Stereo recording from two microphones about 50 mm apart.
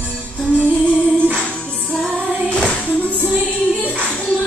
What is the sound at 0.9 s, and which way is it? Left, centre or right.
Music, left.